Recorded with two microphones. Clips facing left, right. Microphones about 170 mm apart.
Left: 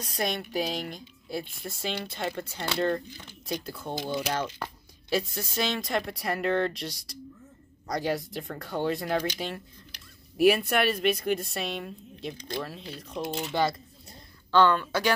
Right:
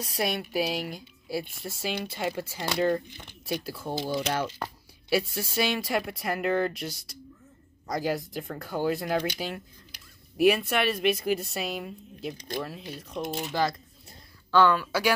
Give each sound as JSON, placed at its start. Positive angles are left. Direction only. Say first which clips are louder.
{"t": 0.0, "sound": "a woman's voice", "louder": "right 1 dB", "side_deg": -5}
{"t": 3.1, "sound": "speech", "louder": "right 1 dB", "side_deg": -15}
{"t": 3.6, "sound": "a woman's voice", "louder": "right 2 dB", "side_deg": -5}